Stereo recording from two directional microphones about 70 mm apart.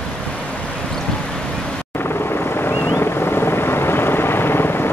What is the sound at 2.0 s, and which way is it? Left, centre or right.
Vehicle, left.